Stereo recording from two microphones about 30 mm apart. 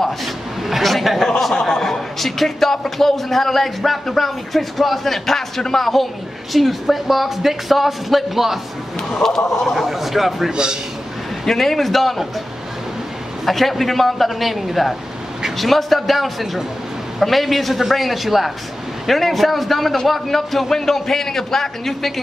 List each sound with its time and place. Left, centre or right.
0.2 s a sound: centre
0.8 s speech: centre
1.5 s speech: centre
6.5 s speech: centre
9.1 s speech: centre
9.8 s speech: centre
10.5 s a man's voice: right
11.4 s speech: centre
13.5 s speech: centre